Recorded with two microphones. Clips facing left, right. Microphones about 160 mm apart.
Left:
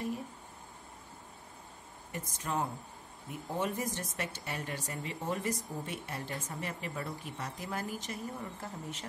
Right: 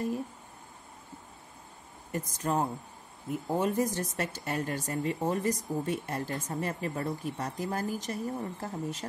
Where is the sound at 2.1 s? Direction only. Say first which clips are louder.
Right 6 dB; 40° right (ahead or behind).